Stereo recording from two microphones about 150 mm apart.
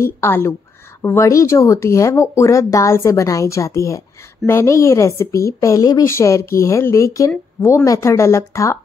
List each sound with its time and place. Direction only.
0.2 s a woman's voice: 15° left (ahead or behind)